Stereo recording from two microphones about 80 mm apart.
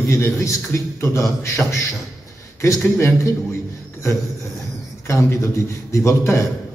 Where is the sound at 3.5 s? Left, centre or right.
Left.